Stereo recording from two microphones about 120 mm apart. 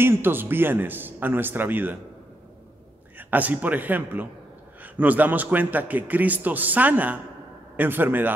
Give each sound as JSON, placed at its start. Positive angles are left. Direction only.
{"t": 0.0, "sound": "a man's voice", "side_deg": -20}
{"t": 3.2, "sound": "a man's voice", "side_deg": -15}